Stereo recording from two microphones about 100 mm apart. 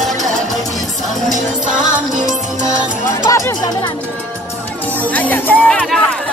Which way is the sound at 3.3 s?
35° left (ahead or behind).